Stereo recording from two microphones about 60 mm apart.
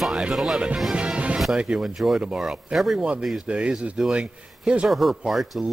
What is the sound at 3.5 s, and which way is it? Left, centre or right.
A man's voice, centre.